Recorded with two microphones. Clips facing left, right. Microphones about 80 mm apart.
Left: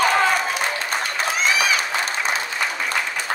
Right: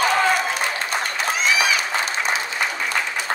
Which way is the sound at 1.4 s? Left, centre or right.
Left.